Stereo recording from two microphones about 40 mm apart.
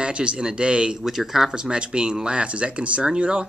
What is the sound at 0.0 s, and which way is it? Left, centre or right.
Speech, right.